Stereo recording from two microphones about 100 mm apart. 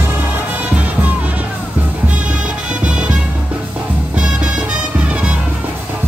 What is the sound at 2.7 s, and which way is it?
Music, 10° right (ahead or behind).